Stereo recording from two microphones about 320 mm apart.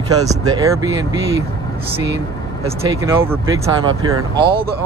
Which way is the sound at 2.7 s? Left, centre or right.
Centre.